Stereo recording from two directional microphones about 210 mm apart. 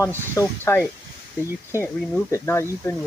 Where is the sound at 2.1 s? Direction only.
10° left (ahead or behind).